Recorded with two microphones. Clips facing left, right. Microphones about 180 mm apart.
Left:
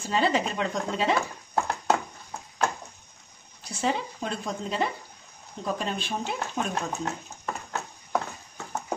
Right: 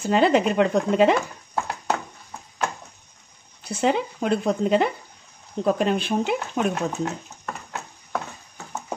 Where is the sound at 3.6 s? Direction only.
65° right (ahead or behind).